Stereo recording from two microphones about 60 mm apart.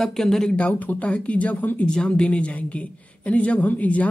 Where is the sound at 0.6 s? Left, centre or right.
Left.